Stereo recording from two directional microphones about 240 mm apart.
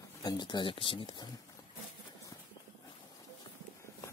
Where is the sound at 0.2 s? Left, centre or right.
Centre.